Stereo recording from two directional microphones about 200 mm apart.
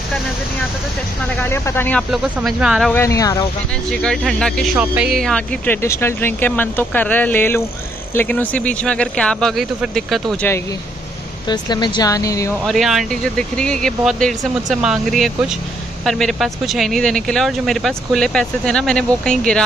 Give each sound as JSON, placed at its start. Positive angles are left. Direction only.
{"t": 1.4, "sound": "speech", "side_deg": 10}
{"t": 2.9, "sound": "speech", "side_deg": 15}
{"t": 4.0, "sound": "speech", "side_deg": 5}
{"t": 11.4, "sound": "speech", "side_deg": 20}
{"t": 12.6, "sound": "speech", "side_deg": 0}